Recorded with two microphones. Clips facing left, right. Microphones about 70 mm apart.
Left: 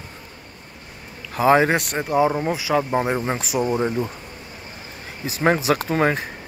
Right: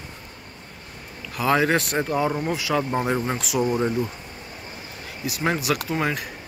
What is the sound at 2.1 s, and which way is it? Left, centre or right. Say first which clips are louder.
Speech: left 8 dB; centre.